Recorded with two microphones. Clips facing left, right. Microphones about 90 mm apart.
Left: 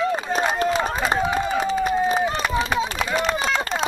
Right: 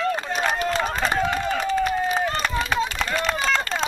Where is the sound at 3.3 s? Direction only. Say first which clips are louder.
Even; 10° left (ahead or behind).